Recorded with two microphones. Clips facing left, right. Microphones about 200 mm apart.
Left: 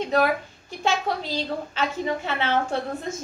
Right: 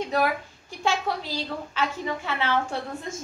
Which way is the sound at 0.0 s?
20° left (ahead or behind).